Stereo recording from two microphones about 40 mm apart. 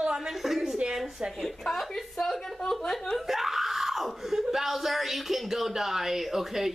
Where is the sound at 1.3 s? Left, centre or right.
Centre.